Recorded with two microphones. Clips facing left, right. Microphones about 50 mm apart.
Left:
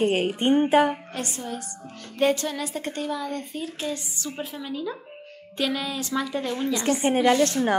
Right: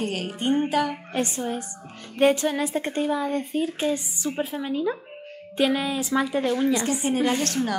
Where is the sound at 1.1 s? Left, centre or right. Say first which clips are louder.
Right 5 dB; right.